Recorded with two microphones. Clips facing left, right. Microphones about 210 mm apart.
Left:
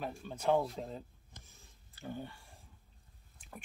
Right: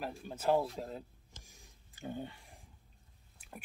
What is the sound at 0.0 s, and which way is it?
Speech, 5° right (ahead or behind).